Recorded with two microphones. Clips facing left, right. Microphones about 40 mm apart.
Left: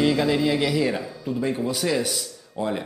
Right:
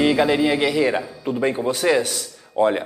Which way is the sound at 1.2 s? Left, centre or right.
Right.